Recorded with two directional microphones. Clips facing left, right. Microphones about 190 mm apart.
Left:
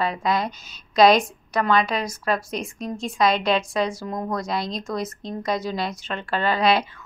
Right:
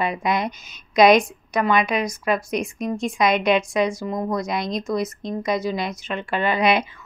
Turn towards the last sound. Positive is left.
turn(degrees=-15)  # may be behind; listen again after turning